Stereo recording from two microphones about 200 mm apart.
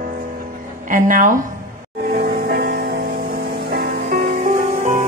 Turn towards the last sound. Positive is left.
turn(degrees=-40)  # may be behind; listen again after turning